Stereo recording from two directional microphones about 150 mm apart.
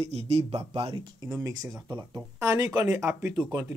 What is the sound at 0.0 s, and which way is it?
Speech, 45° right (ahead or behind).